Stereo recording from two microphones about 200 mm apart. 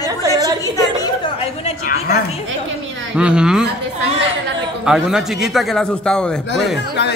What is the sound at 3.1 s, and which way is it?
Speech, 5° right (ahead or behind).